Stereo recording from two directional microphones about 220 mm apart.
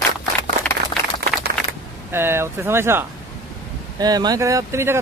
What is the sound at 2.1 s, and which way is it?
Speech, 10° right (ahead or behind).